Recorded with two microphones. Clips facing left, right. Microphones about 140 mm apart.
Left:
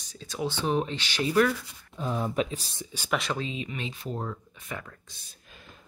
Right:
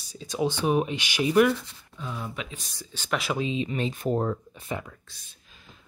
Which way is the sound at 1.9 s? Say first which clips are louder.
Left 7 dB; 40° left (ahead or behind).